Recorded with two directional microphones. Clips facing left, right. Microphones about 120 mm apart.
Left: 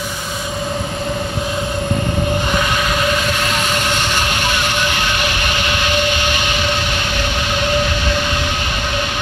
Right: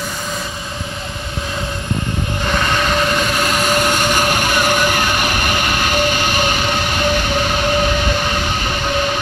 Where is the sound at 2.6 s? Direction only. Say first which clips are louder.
Right 1 dB; 5° left (ahead or behind).